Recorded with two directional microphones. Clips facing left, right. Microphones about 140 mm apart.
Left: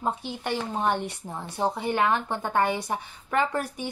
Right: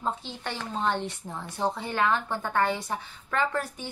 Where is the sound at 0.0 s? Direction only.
15° left (ahead or behind).